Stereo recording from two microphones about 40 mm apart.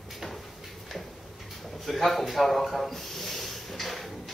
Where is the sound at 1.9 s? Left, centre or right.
Centre.